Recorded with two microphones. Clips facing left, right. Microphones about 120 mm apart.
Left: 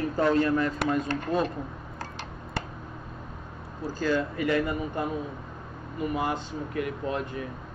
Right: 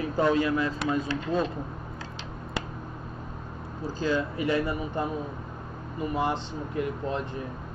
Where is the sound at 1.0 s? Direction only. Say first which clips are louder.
Even; 50° left (ahead or behind).